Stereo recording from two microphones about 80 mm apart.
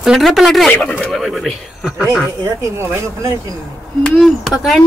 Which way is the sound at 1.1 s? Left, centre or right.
Centre.